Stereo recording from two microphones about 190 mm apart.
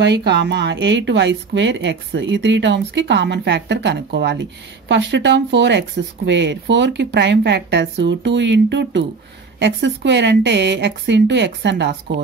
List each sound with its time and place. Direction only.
0.0 s speech: 60° right (ahead or behind)